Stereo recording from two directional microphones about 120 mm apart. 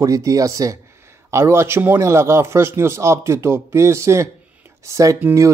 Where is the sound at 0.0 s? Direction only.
30° right (ahead or behind).